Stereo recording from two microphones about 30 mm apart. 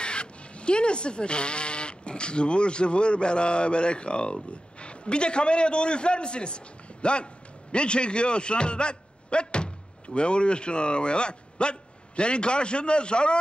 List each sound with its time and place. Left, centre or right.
0.0 s a man's voice: left